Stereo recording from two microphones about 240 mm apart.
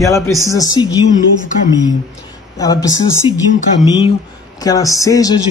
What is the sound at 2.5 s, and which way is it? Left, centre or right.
Speech, centre.